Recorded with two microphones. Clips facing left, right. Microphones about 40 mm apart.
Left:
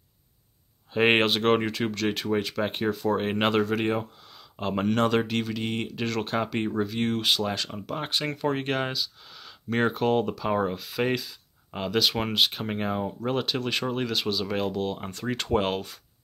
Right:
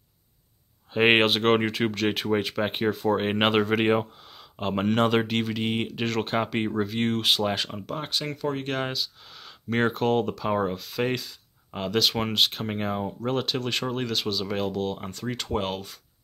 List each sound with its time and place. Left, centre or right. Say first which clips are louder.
0.9 s speech: right 2 dB; centre; by 4.3 s right
4.3 s speech: right 1 dB; centre
8.3 s speech: left 3 dB; left
8.7 s speech: even; centre